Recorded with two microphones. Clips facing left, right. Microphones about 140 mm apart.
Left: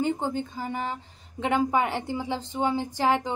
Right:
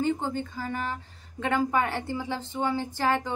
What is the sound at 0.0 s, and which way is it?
A woman's voice, 15° left (ahead or behind).